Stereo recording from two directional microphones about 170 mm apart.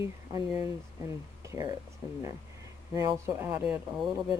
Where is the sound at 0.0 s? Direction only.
15° right (ahead or behind).